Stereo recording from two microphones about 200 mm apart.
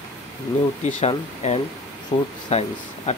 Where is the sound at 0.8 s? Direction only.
30° left (ahead or behind).